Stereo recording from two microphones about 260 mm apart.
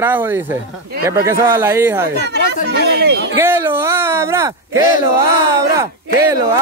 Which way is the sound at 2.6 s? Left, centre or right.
Right.